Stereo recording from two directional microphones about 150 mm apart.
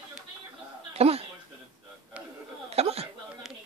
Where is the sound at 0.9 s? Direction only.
40° right (ahead or behind).